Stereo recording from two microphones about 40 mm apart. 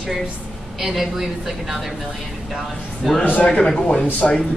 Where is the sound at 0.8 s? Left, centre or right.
Centre.